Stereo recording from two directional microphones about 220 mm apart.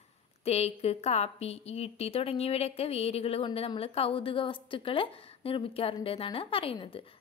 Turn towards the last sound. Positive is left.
turn(degrees=25)  # may be behind; listen again after turning